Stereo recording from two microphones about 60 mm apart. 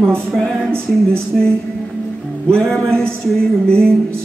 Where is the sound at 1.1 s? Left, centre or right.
Centre.